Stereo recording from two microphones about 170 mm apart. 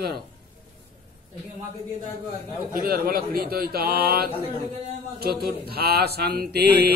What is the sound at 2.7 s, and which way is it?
A man's voice, 60° right (ahead or behind).